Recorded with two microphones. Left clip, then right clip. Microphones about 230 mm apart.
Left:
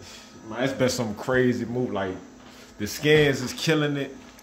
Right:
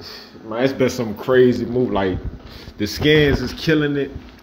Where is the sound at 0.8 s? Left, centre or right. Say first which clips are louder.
Right 5 dB; centre.